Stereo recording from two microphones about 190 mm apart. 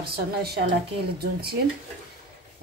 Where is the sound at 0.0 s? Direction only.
55° right (ahead or behind).